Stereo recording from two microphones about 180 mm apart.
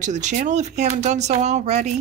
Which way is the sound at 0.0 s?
40° right (ahead or behind).